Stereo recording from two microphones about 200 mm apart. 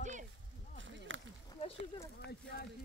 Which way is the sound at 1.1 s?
70° right (ahead or behind).